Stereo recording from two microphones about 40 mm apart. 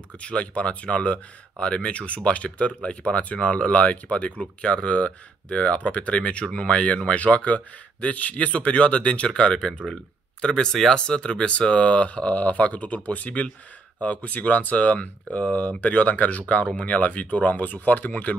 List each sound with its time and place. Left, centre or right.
0.2 s speech: left